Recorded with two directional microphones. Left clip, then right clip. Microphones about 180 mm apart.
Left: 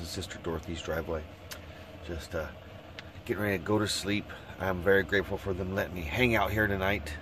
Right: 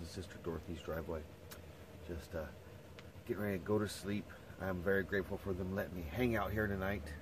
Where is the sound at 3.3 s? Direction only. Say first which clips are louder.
Left 8 dB; 20° left (ahead or behind).